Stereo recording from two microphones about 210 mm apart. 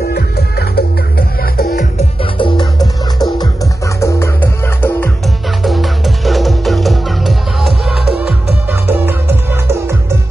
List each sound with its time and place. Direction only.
0.0 s music: 50° left (ahead or behind)
2.0 s music: 25° left (ahead or behind)
3.2 s music: centre (ahead or behind)
3.8 s music: 15° left (ahead or behind)
8.6 s music: 10° right (ahead or behind)